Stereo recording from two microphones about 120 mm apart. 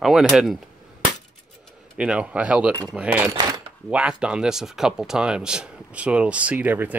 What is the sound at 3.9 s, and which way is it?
Speech, 10° right (ahead or behind).